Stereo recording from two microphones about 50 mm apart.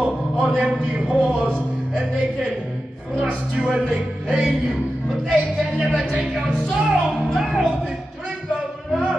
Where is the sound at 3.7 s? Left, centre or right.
Centre.